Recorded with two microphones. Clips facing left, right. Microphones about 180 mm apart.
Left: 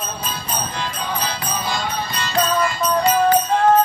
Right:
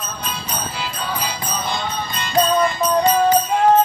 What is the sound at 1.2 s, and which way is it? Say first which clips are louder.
Music: even; 20° right (ahead or behind).